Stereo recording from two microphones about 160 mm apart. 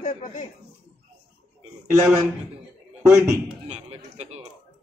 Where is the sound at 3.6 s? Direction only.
40° right (ahead or behind).